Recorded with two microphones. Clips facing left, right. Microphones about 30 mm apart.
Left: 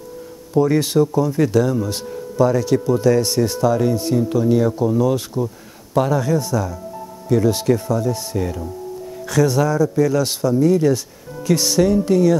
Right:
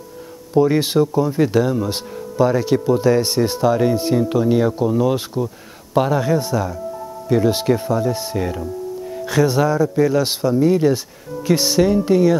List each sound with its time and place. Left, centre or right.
0.6 s speech: right